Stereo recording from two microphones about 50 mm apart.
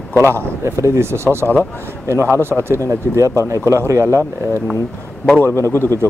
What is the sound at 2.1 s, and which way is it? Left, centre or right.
Speech, right.